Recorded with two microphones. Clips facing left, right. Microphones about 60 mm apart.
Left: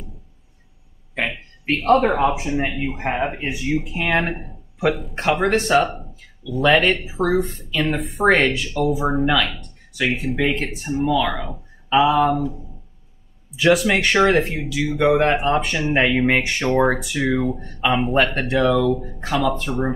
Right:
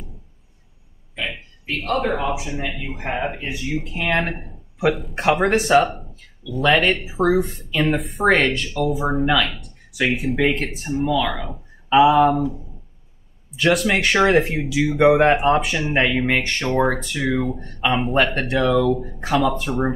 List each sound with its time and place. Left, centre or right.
1.1 s a sound: left
1.9 s speech: left
2.3 s speech: left
2.7 s speech: centre
3.3 s speech: left
3.6 s speech: centre
13.6 s speech: centre